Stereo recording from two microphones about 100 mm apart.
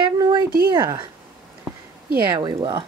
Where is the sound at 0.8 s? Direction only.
30° right (ahead or behind).